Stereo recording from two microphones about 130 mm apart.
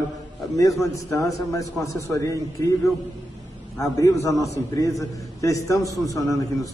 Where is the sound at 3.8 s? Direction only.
25° left (ahead or behind).